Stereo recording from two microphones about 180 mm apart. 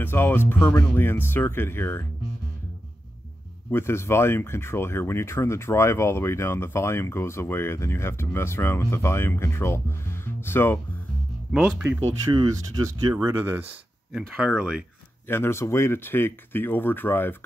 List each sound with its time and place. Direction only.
0.0 s speech: 10° left (ahead or behind)
3.7 s speech: 15° left (ahead or behind)
11.5 s speech: 5° right (ahead or behind)
12.3 s speech: 25° right (ahead or behind)
13.1 s speech: 15° right (ahead or behind)
15.2 s speech: 15° left (ahead or behind)